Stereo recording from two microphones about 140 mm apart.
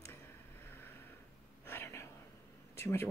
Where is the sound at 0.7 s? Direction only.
15° left (ahead or behind).